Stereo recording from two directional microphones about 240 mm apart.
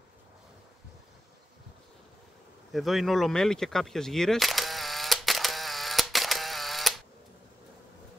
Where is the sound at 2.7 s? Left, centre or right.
Centre.